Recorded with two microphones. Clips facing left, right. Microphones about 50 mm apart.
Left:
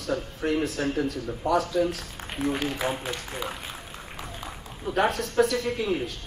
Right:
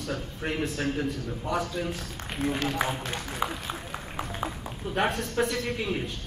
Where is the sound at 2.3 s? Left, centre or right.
Centre.